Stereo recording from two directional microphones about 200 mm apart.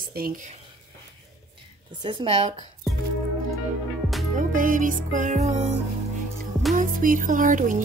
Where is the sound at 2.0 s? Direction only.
30° right (ahead or behind).